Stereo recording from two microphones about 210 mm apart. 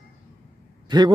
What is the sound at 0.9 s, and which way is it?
Speech, 20° right (ahead or behind).